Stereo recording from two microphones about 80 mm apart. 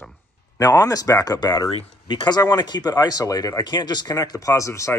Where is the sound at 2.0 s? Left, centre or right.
Left.